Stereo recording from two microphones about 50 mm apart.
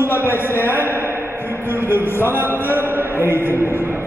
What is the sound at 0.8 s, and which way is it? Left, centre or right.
Speech, right.